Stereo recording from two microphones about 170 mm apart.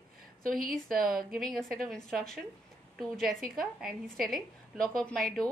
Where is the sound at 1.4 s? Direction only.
Centre (ahead or behind).